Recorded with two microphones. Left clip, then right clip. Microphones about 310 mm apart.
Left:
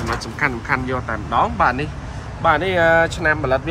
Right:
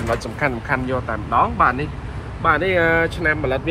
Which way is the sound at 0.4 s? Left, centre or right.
Centre.